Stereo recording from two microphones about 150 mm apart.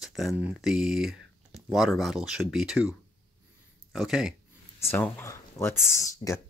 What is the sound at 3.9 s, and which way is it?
Speech, centre (ahead or behind).